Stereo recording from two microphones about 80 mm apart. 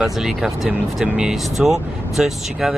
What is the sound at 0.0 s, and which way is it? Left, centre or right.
Speech, centre.